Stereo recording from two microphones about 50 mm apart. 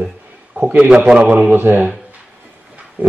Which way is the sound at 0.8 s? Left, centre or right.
Right.